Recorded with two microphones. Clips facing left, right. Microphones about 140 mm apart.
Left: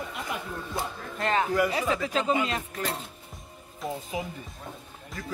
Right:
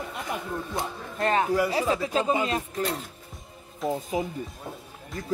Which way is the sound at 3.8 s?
Centre (ahead or behind).